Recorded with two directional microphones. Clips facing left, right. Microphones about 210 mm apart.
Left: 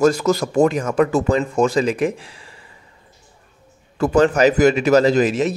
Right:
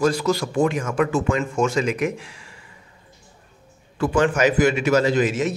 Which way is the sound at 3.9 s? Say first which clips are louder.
Left 4 dB; 40° left (ahead or behind).